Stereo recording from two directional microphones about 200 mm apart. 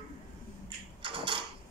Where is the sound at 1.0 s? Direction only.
25° right (ahead or behind).